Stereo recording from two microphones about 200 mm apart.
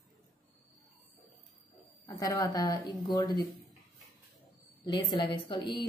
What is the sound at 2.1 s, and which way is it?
A woman's voice, 20° left (ahead or behind).